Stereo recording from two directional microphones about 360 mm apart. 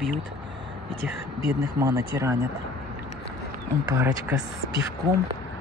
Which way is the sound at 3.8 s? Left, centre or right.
Centre.